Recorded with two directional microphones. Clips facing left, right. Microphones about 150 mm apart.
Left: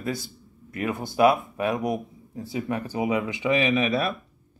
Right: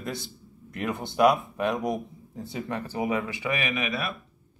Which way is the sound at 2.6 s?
15° left (ahead or behind).